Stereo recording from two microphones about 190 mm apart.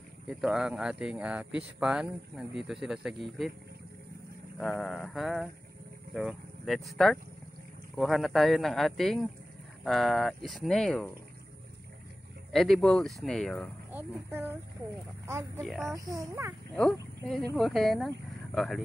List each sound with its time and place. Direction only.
0.3 s speech: 5° right (ahead or behind)
4.6 s speech: 5° left (ahead or behind)
12.5 s speech: centre (ahead or behind)
13.9 s speech: 10° right (ahead or behind)
16.7 s speech: 5° left (ahead or behind)